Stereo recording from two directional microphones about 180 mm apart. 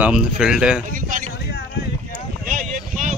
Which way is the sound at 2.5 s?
45° right (ahead or behind).